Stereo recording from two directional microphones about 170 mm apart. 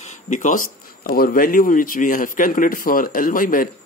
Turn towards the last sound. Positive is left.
turn(degrees=55)  # may be behind; listen again after turning